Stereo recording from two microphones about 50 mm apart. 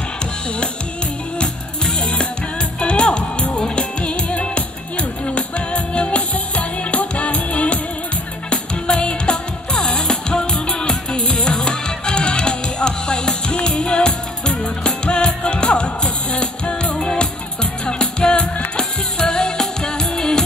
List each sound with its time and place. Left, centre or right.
1.4 s music: centre